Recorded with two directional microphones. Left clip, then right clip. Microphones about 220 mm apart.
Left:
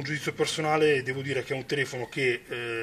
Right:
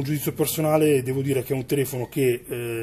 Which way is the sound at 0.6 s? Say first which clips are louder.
Right 4 dB; 35° right (ahead or behind).